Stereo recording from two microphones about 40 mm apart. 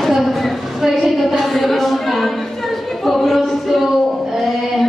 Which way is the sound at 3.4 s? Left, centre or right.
Centre.